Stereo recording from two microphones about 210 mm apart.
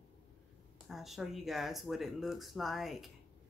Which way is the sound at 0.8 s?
Centre (ahead or behind).